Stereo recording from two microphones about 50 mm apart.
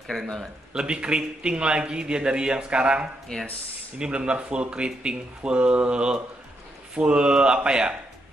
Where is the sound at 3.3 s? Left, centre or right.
Centre.